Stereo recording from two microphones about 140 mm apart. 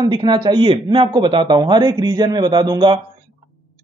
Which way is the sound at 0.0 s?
30° right (ahead or behind).